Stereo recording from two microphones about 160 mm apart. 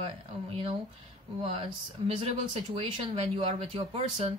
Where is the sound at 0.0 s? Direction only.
35° right (ahead or behind).